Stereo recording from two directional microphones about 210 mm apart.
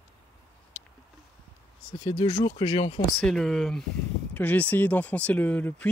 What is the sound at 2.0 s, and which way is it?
Speech, 25° left (ahead or behind).